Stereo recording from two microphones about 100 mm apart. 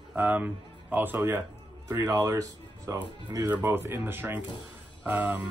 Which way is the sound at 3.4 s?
20° right (ahead or behind).